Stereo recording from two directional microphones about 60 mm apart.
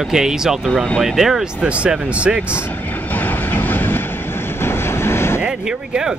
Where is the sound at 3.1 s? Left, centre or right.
Left.